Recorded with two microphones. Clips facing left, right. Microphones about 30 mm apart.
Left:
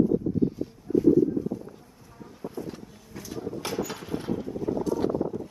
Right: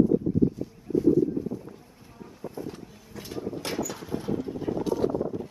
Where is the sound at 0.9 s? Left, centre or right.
Centre.